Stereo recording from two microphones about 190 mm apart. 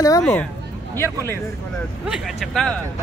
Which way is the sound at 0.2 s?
5° left (ahead or behind).